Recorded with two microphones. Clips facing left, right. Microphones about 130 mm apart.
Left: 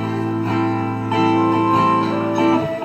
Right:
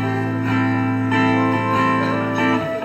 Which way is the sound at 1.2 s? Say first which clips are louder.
Left 5 dB; 30° left (ahead or behind).